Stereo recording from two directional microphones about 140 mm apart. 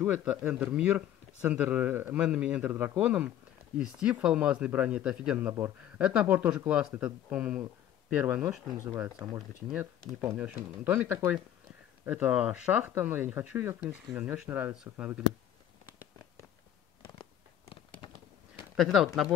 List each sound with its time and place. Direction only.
0.0 s speech: 10° right (ahead or behind)
17.0 s a sound: 35° left (ahead or behind)
18.8 s speech: 5° right (ahead or behind)